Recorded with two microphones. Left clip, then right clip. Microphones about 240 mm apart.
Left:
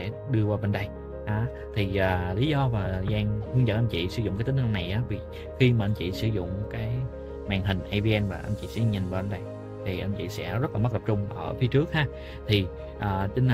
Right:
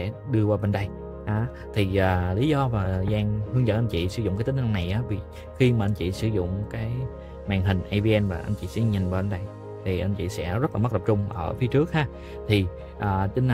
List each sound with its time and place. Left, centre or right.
0.0 s speech: right